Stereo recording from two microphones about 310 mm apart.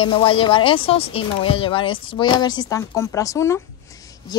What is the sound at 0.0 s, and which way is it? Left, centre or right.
A woman's voice, centre.